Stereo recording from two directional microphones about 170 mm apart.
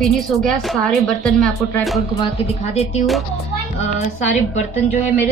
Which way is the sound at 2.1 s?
40° left (ahead or behind).